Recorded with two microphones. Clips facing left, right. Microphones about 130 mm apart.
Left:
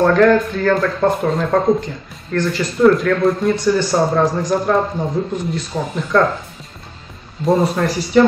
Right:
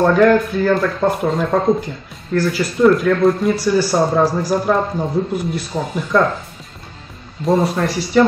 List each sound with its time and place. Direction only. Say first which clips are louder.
0.0 s speech: even; 10° right (ahead or behind)
7.4 s speech: left 1 dB; centre (ahead or behind)